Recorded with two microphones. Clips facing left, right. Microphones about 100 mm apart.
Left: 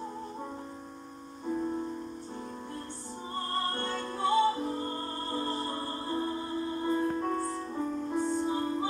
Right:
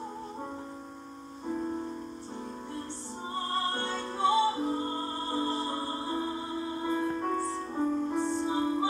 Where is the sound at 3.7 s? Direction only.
25° right (ahead or behind).